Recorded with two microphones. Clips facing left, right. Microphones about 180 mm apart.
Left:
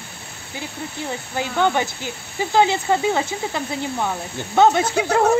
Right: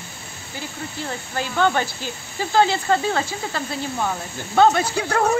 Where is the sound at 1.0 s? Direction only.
15° left (ahead or behind).